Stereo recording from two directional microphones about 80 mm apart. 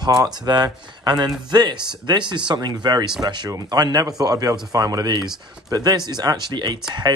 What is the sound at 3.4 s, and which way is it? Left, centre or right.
Speech, right.